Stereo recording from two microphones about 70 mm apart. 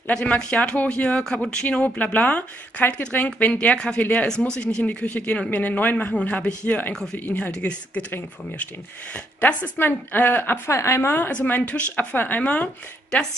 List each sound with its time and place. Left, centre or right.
0.1 s speech: centre
9.1 s a woman's voice: centre